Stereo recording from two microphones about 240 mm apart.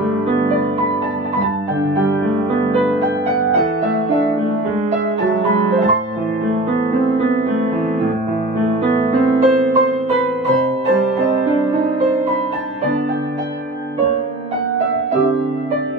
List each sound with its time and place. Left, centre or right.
9.0 s music: right